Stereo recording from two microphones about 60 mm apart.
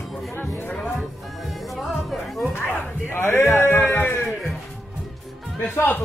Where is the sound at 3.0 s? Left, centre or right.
Left.